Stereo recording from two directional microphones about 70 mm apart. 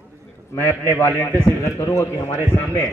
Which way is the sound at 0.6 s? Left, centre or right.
Left.